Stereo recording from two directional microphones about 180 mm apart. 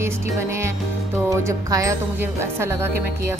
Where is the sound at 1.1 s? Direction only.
15° right (ahead or behind).